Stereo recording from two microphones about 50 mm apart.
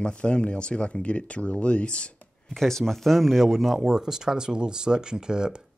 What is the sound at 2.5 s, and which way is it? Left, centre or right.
Speech, centre.